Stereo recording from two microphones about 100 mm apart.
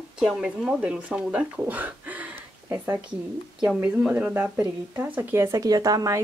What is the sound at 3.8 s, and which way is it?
Speech, 15° right (ahead or behind).